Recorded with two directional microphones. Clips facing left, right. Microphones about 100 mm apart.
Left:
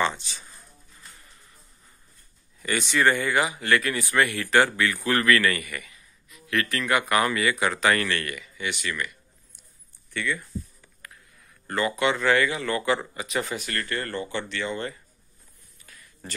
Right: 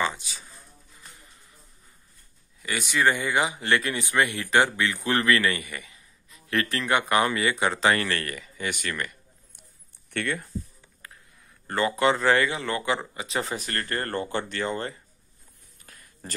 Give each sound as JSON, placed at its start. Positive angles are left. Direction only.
{"t": 0.0, "sound": "speech", "side_deg": -10}
{"t": 2.6, "sound": "speech", "side_deg": -5}
{"t": 10.1, "sound": "speech", "side_deg": -55}
{"t": 11.0, "sound": "a sound", "side_deg": -30}
{"t": 11.6, "sound": "speech", "side_deg": -30}
{"t": 15.8, "sound": "a sound", "side_deg": -50}